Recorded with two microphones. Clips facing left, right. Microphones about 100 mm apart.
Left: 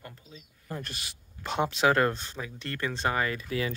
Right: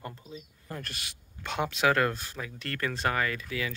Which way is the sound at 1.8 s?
25° left (ahead or behind).